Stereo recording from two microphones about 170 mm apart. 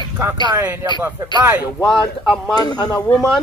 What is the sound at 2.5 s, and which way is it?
Speech, 25° left (ahead or behind).